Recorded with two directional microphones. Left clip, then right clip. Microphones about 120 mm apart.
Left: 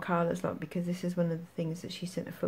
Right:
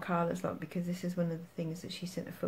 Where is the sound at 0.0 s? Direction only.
35° left (ahead or behind).